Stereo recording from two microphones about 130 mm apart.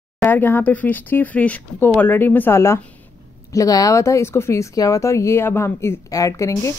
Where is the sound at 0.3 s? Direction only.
15° left (ahead or behind).